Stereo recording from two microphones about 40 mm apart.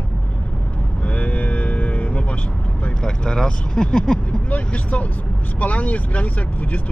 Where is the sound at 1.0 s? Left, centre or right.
Left.